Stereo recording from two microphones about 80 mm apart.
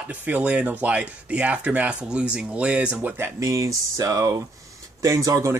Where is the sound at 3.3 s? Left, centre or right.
Right.